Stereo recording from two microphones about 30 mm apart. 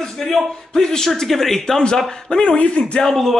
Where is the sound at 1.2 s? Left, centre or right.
Centre.